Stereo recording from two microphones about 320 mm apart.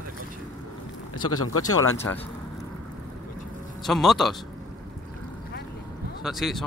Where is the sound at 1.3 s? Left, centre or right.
Left.